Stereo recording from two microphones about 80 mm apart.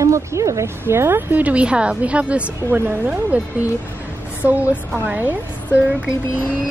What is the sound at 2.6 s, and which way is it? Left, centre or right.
Speech, right.